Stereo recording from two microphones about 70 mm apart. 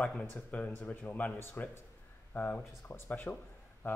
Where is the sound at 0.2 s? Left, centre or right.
Left.